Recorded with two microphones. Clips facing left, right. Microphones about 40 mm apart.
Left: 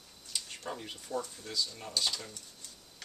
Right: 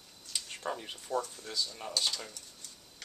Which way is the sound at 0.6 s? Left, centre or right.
Centre.